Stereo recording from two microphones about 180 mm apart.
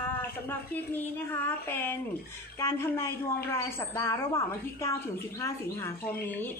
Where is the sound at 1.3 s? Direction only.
10° left (ahead or behind).